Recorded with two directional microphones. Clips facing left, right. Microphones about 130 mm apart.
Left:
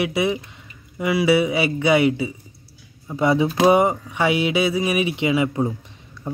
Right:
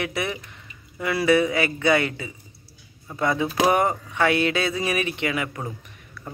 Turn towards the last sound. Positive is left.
turn(degrees=20)  # may be behind; listen again after turning